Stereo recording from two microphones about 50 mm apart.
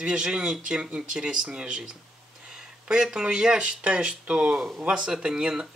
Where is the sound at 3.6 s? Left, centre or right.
Right.